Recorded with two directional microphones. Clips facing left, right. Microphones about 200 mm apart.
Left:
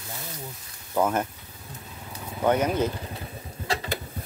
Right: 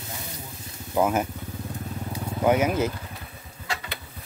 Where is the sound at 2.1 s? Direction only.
10° right (ahead or behind).